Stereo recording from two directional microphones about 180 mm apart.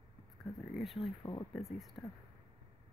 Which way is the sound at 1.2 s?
25° left (ahead or behind).